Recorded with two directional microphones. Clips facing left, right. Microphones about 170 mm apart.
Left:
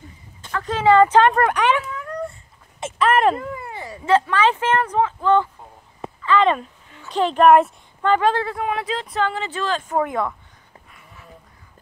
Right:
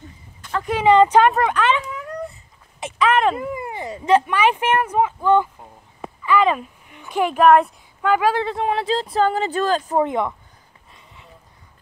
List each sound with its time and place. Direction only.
0.6 s speech: 15° right (ahead or behind)
1.5 s speech: 10° left (ahead or behind)
2.8 s speech: centre (ahead or behind)
3.3 s speech: 15° right (ahead or behind)
6.9 s a sound: 15° right (ahead or behind)
7.4 s speech: centre (ahead or behind)
8.4 s speech: 25° right (ahead or behind); by 9.9 s 40° right (ahead or behind)
9.9 s speech: 20° right (ahead or behind)
10.9 s a sound: 20° right (ahead or behind)